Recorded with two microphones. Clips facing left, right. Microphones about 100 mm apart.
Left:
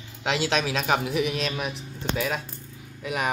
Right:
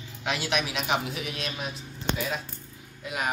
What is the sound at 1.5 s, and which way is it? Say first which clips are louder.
Speech: left 4 dB; 75° left (ahead or behind).